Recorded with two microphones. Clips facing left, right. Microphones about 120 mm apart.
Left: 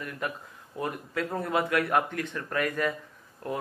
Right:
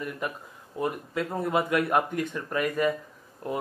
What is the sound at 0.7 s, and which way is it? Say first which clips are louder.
Speech: right 3 dB; 15° right (ahead or behind).